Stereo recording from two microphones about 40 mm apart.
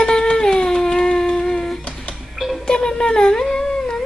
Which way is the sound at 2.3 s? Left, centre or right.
Centre.